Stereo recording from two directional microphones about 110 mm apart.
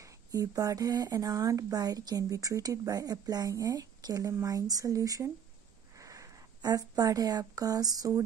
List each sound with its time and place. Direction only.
0.0 s speech: 30° right (ahead or behind)